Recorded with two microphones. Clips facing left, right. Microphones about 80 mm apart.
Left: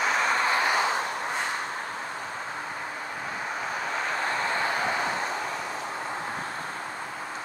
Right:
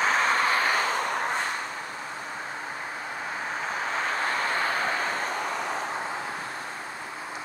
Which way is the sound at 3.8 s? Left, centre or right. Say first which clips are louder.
Right 2 dB; right.